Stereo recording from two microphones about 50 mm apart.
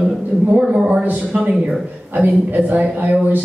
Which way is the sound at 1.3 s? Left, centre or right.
Centre.